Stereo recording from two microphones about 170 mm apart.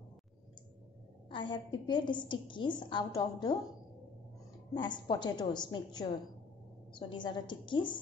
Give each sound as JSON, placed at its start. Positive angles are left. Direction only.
{"t": 1.3, "sound": "a woman's voice", "side_deg": 30}
{"t": 4.7, "sound": "a woman's voice", "side_deg": 25}